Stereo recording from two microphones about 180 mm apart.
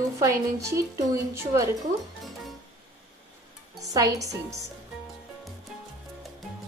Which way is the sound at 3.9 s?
20° right (ahead or behind).